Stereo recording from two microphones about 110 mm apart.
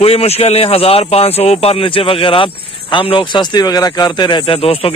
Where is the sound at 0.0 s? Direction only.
60° left (ahead or behind); by 4.6 s 45° left (ahead or behind).